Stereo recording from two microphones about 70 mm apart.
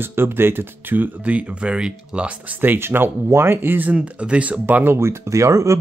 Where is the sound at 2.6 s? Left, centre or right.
Right.